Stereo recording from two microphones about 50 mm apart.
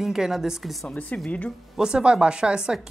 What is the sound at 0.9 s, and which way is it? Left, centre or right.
Speech, left.